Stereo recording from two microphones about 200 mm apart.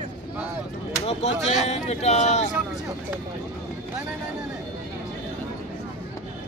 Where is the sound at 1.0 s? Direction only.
35° left (ahead or behind).